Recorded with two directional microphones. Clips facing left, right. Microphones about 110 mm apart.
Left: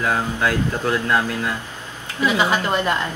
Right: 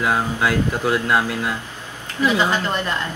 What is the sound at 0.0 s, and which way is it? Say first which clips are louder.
Speech: right 1 dB; 15° right (ahead or behind).